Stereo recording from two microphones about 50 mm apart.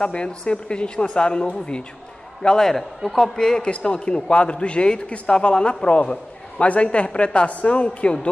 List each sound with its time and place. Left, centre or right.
0.0 s a man's voice: left